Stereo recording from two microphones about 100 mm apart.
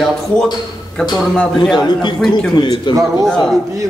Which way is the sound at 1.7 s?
50° left (ahead or behind).